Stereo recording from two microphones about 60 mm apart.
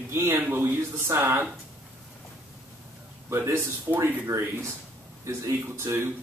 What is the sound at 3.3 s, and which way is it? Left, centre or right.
Speech, right.